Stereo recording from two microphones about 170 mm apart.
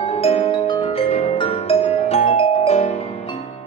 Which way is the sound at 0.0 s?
35° left (ahead or behind).